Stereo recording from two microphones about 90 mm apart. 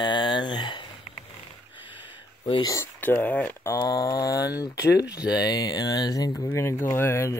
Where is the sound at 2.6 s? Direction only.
40° left (ahead or behind).